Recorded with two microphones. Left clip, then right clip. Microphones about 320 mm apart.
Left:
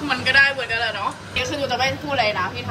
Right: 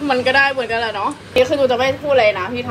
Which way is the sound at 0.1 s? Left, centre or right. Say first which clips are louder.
Right 2 dB; centre.